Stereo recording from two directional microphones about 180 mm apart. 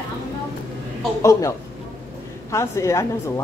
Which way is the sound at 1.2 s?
15° left (ahead or behind).